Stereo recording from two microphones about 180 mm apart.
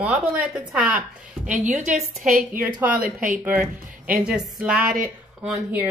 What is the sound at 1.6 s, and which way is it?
Speech, 45° right (ahead or behind).